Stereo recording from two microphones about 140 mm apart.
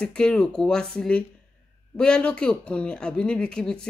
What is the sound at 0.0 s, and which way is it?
A woman's voice, 5° left (ahead or behind).